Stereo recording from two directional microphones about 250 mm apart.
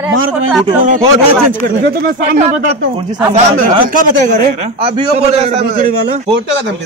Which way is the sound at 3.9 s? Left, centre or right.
Right.